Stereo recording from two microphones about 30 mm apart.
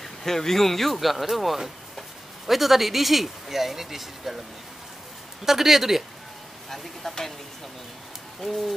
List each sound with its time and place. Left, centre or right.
0.0 s speech: centre
1.3 s bird: centre
2.4 s speech: centre
5.4 s speech: centre
6.7 s speech: centre
8.4 s bird: centre